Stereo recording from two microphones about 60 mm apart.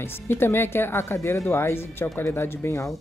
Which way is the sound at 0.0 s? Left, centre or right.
Left.